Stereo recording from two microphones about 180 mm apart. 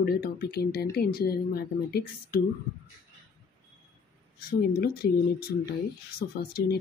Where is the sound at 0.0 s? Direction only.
60° left (ahead or behind).